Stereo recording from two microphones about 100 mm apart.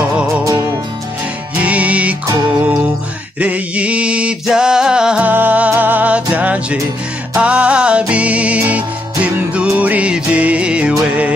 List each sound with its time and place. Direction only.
0.4 s music: 35° right (ahead or behind)
1.5 s music: 15° right (ahead or behind)
3.3 s a sound: 15° right (ahead or behind)
7.3 s music: 10° right (ahead or behind)